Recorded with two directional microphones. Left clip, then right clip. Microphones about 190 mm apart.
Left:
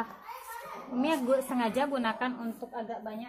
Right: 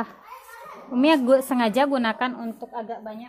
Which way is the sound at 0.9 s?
45° right (ahead or behind).